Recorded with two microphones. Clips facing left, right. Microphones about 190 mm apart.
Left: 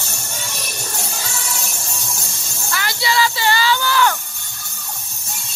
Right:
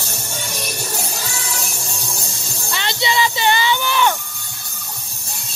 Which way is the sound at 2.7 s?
25° right (ahead or behind).